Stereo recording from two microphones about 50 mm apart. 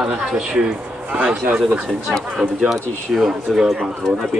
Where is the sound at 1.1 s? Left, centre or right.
Right.